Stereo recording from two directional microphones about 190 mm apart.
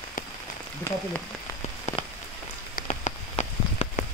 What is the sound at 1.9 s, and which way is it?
Rain on surface, 40° left (ahead or behind).